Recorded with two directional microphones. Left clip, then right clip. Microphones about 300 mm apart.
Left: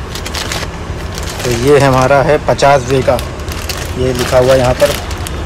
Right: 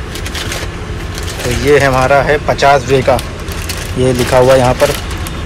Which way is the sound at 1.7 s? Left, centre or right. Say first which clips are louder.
Even; centre.